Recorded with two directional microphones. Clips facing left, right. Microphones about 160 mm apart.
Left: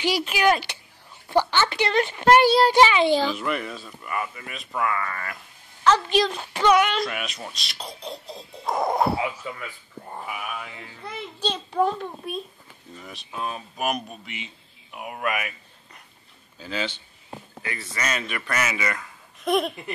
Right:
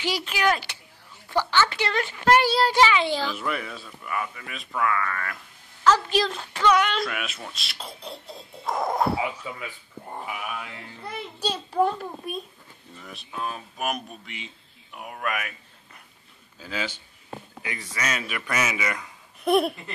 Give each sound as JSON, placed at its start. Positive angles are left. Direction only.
{"t": 0.0, "sound": "a child's voice", "side_deg": 15}
{"t": 3.3, "sound": "speech", "side_deg": 0}
{"t": 5.9, "sound": "speech", "side_deg": -5}
{"t": 6.3, "sound": "speech", "side_deg": 15}
{"t": 7.0, "sound": "speech", "side_deg": 0}